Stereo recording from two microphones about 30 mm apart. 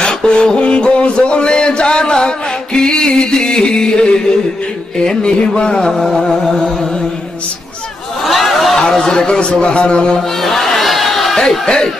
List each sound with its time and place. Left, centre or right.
0.0 s music: left
0.6 s music: left
1.5 s a sound: left
2.2 s mantra: left
3.3 s music: left
4.9 s a man's voice: left
6.1 s music: centre
8.2 s a sound: centre
8.7 s a man's voice: centre
10.4 s a sound: centre
11.6 s a man's voice: left